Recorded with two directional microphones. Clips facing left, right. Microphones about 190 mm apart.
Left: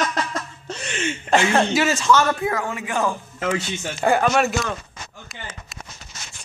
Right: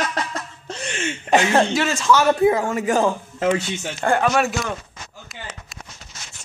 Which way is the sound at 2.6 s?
40° right (ahead or behind).